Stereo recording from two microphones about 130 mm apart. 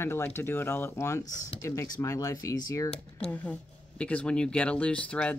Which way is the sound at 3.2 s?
10° left (ahead or behind).